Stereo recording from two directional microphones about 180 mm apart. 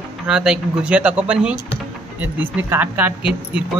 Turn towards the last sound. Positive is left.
turn(degrees=-10)  # may be behind; listen again after turning